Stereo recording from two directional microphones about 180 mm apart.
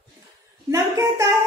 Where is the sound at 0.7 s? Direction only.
15° right (ahead or behind).